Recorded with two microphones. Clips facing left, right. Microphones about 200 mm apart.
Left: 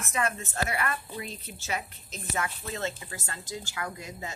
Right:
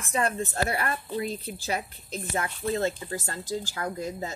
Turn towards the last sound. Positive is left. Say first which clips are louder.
# right 6 dB
turn(degrees=-35)  # may be behind; listen again after turning